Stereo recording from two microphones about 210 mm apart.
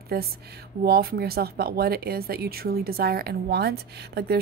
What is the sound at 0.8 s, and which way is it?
Speech, 50° right (ahead or behind).